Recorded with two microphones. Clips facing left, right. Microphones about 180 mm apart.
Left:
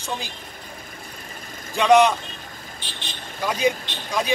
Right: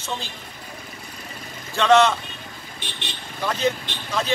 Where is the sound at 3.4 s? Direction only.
10° left (ahead or behind).